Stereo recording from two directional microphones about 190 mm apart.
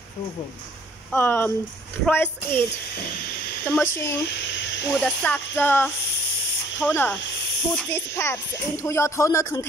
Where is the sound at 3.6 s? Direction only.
10° left (ahead or behind).